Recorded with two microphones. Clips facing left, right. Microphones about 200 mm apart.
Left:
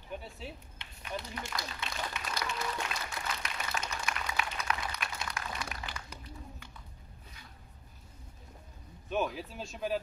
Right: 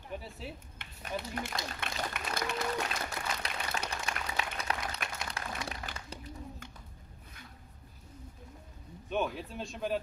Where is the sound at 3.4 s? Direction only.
35° right (ahead or behind).